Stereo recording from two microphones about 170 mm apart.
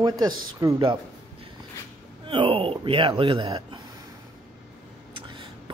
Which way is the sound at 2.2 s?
30° right (ahead or behind).